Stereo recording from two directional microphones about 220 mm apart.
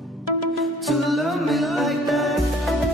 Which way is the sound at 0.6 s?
Centre (ahead or behind).